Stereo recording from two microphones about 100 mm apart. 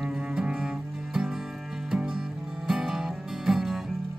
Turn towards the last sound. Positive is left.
turn(degrees=-5)  # may be behind; listen again after turning